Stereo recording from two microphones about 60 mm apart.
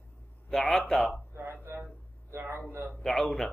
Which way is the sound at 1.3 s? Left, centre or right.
Right.